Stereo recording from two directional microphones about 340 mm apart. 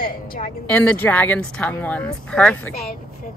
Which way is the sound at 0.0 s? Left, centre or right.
Left.